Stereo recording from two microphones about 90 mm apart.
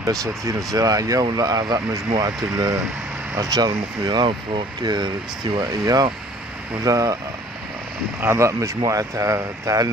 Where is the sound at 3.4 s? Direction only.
45° right (ahead or behind).